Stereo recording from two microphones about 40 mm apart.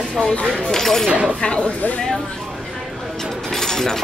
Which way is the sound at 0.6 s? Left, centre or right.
Centre.